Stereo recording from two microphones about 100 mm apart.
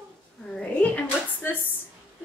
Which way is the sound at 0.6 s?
15° left (ahead or behind).